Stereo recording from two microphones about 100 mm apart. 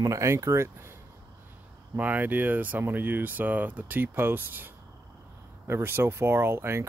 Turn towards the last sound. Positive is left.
turn(degrees=-25)  # may be behind; listen again after turning